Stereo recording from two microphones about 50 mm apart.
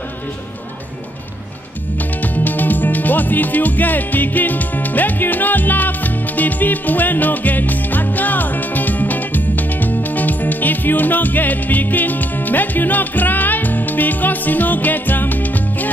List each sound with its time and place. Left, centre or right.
2.2 s music: left